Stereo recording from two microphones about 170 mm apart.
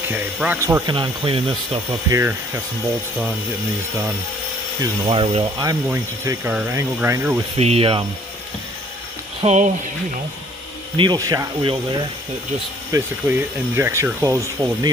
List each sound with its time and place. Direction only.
0.1 s speech: 10° right (ahead or behind)
0.9 s speech: 30° right (ahead or behind)
5.0 s speech: 30° right (ahead or behind)
5.9 s speech: 15° right (ahead or behind)
7.5 s speech: 35° right (ahead or behind)
9.4 s speech: 40° right (ahead or behind)
11.0 s speech: 20° right (ahead or behind)
12.9 s speech: 10° right (ahead or behind)